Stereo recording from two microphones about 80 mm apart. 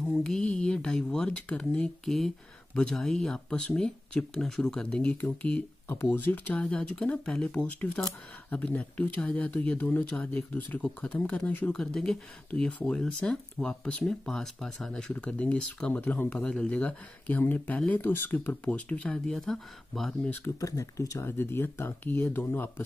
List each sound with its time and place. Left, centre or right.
0.0 s speech: centre
4.8 s speech: centre
11.7 s speech: centre
20.4 s speech: left
21.2 s speech: left